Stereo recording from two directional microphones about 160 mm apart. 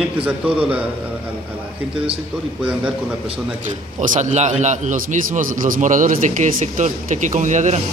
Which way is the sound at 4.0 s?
50° right (ahead or behind).